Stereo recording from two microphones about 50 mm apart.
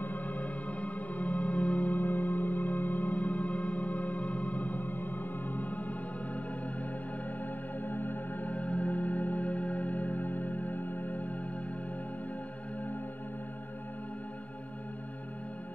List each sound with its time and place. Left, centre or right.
0.0 s music: left